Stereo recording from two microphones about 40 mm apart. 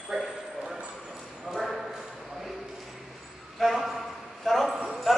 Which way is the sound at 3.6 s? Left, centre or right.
Centre.